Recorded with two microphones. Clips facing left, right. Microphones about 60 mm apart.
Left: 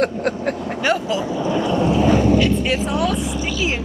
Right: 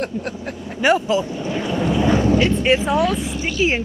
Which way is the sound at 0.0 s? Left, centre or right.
Left.